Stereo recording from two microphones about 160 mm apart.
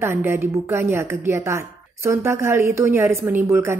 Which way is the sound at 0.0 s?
15° right (ahead or behind).